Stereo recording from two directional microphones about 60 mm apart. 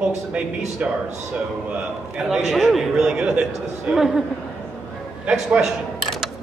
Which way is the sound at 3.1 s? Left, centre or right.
Centre.